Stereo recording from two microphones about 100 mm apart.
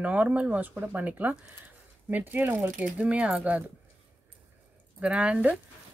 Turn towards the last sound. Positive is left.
turn(degrees=-10)  # may be behind; listen again after turning